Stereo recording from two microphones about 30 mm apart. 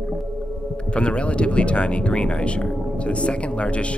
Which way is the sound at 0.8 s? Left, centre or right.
Left.